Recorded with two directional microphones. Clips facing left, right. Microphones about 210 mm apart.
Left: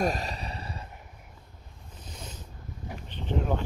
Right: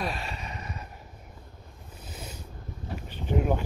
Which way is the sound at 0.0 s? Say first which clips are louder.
Left 5 dB; 40° left (ahead or behind).